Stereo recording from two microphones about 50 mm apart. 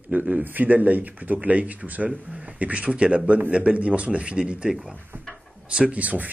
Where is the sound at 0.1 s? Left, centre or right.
Right.